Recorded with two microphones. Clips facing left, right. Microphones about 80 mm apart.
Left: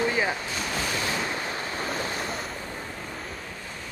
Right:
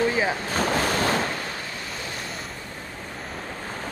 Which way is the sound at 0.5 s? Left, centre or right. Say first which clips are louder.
Right 7 dB; right.